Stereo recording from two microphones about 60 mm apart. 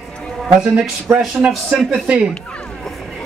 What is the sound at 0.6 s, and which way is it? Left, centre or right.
Speech, centre.